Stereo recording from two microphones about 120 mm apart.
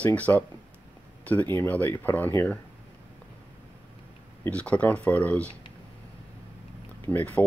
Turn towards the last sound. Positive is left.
turn(degrees=15)  # may be behind; listen again after turning